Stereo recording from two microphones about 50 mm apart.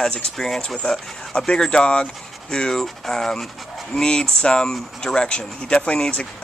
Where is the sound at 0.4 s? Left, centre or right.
Centre.